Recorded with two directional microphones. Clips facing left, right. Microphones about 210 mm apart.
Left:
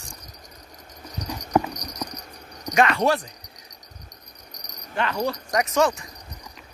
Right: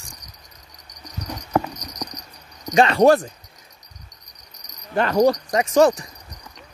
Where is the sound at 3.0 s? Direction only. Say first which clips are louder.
Right 8 dB; 45° right (ahead or behind).